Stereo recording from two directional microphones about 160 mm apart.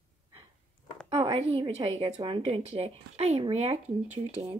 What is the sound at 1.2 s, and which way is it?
Speech, 35° right (ahead or behind).